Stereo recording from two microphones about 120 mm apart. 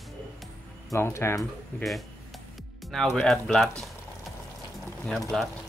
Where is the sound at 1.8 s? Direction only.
Centre (ahead or behind).